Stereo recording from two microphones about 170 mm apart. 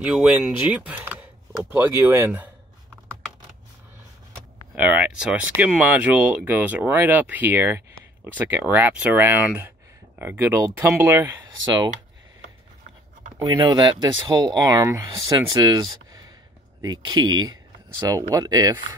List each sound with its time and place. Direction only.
0.0 s speech: 5° right (ahead or behind)
4.7 s speech: 10° right (ahead or behind)
11.4 s speech: 25° right (ahead or behind)
13.4 s speech: 25° right (ahead or behind)